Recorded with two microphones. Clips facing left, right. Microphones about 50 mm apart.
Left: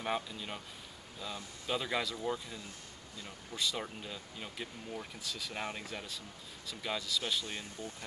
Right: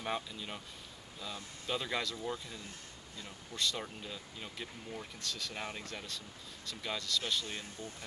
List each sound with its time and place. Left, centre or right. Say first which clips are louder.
0.0 s speech: left 2 dB; centre
7.4 s speech: left 1 dB; left